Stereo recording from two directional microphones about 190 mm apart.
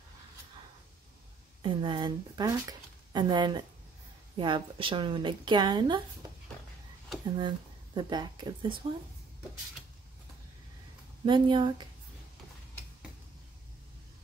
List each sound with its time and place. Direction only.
1.6 s a woman's voice: 25° right (ahead or behind)
7.3 s speech: 25° right (ahead or behind)
11.2 s a woman's voice: 25° right (ahead or behind)